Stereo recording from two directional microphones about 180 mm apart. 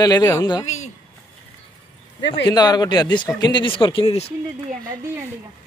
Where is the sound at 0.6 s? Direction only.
40° left (ahead or behind).